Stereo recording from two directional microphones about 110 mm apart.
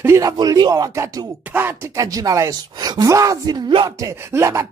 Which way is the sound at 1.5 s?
20° right (ahead or behind).